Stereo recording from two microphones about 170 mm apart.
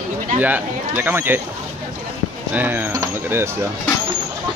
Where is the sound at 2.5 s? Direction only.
10° right (ahead or behind).